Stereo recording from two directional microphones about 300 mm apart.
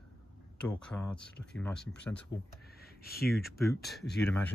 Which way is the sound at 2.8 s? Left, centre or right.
Left.